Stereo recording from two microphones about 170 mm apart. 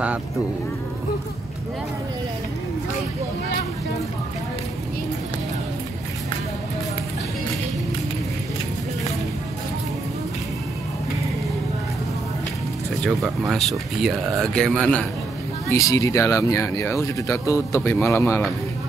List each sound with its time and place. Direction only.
13.5 s speech: centre (ahead or behind)
15.7 s speech: 20° left (ahead or behind)